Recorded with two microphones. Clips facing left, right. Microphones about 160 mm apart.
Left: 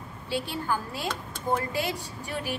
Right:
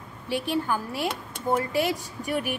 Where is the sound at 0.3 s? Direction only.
15° right (ahead or behind).